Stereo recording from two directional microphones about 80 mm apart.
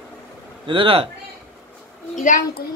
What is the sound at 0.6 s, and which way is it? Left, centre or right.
Speech, right.